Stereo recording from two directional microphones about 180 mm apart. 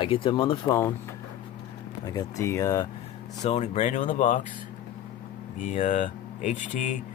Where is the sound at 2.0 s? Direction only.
20° left (ahead or behind).